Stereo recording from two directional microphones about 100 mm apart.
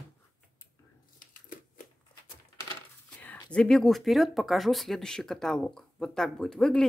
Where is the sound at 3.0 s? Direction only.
10° left (ahead or behind).